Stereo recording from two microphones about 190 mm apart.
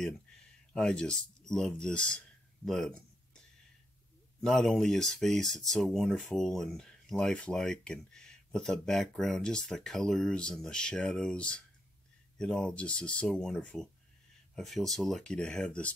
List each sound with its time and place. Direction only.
0.7 s speech: 5° left (ahead or behind)
4.4 s speech: centre (ahead or behind)